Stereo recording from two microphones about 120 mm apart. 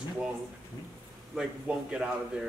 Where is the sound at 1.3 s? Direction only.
5° right (ahead or behind).